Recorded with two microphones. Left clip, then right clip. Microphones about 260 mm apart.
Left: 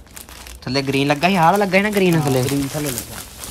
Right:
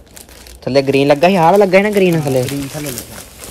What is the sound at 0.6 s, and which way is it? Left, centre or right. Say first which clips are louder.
Speech: right 8 dB; centre.